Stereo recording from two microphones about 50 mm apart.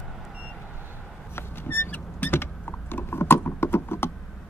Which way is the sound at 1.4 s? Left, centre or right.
Left.